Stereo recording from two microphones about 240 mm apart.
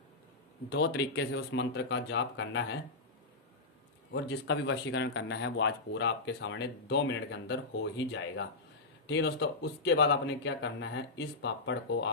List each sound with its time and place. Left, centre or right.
0.7 s speech: left
4.1 s speech: left
9.0 s speech: left